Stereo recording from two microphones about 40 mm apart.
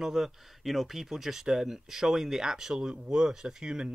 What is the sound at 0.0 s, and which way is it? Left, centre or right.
Speech, centre.